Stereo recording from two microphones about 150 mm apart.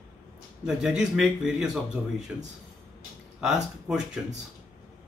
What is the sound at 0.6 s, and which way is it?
A man's voice, 5° right (ahead or behind).